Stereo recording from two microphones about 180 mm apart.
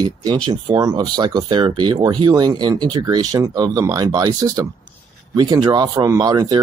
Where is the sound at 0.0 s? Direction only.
25° right (ahead or behind).